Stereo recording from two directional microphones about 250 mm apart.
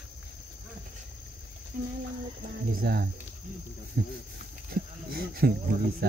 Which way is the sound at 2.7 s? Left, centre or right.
Right.